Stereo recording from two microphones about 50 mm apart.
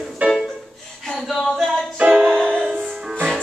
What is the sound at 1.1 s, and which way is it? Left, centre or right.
A capella, centre.